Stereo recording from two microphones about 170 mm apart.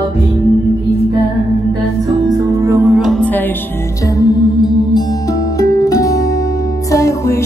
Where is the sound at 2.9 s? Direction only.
Centre (ahead or behind).